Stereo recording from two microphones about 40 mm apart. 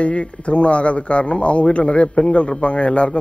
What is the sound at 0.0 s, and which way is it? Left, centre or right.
A man's voice, left.